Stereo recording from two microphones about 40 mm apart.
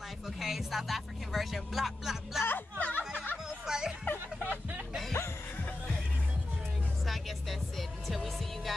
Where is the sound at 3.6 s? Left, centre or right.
Centre.